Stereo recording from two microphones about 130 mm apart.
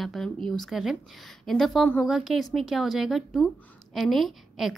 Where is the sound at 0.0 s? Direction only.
Centre (ahead or behind).